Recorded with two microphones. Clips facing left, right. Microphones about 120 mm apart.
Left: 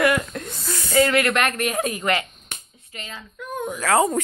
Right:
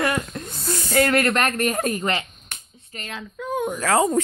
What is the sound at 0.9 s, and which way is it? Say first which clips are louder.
Speech: left 1 dB; 55° right (ahead or behind).